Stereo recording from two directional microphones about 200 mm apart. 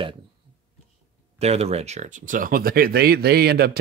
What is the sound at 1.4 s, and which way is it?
Speech, 30° right (ahead or behind).